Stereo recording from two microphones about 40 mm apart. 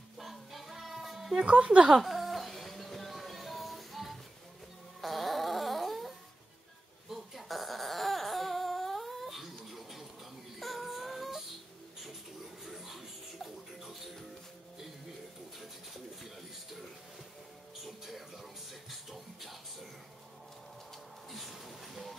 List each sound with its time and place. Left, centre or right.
0.2 s music: centre
1.4 s speech: right
1.9 s music: centre
5.0 s a sound: centre
10.6 s music: centre
12.6 s music: centre
15.6 s pigeon: centre
17.8 s music: centre
21.3 s music: centre